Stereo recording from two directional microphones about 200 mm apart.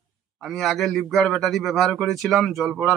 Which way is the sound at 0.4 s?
Centre (ahead or behind).